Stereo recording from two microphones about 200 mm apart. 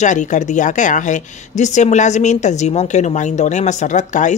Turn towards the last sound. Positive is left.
turn(degrees=35)  # may be behind; listen again after turning